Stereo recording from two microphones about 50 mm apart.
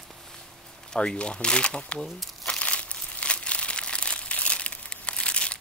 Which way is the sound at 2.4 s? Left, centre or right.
Left.